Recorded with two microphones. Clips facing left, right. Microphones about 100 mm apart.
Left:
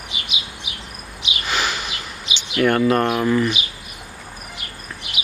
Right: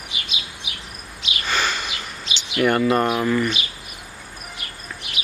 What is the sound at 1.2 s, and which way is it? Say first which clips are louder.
Bird: even; 10° left (ahead or behind).